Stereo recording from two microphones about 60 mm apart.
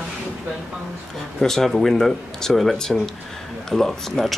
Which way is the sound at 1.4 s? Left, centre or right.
Centre.